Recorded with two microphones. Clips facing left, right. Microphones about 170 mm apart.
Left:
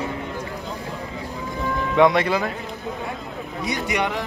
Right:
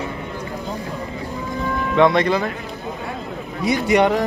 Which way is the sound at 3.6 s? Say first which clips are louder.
Right 7 dB; 20° left (ahead or behind).